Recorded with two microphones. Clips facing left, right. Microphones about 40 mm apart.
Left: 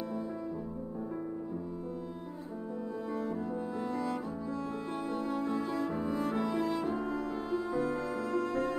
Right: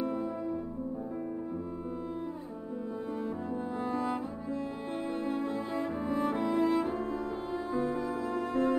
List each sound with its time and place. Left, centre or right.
0.0 s music: right
3.2 s music: right
5.9 s cello: right
7.0 s music: right